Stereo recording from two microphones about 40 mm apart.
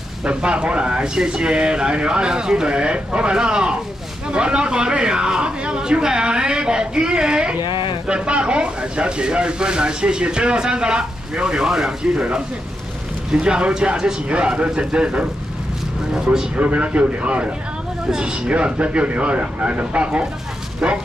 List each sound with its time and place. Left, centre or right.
0.2 s speech: right
13.3 s speech: right
16.5 s speech: right
18.5 s speech: right